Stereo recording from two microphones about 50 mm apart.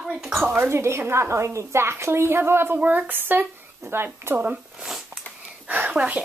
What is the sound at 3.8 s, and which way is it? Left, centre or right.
Speech, right.